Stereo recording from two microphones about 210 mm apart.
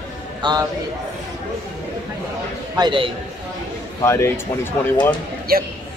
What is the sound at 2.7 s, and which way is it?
Speech, 20° right (ahead or behind).